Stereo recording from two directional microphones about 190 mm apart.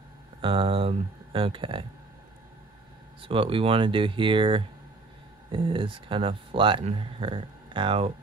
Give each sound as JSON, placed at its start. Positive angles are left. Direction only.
{"t": 0.4, "sound": "speech", "side_deg": -25}
{"t": 3.2, "sound": "speech", "side_deg": -30}